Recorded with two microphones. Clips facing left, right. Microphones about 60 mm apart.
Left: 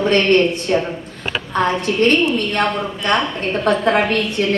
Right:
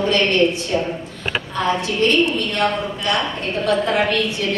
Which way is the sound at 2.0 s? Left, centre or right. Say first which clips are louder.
Left 2 dB; left.